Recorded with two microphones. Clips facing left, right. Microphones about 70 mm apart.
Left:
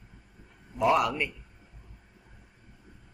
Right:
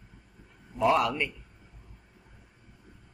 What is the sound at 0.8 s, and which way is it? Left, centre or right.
Speech, centre.